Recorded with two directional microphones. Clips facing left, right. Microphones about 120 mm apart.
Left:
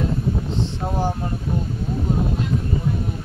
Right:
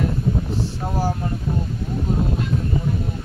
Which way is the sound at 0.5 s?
20° left (ahead or behind).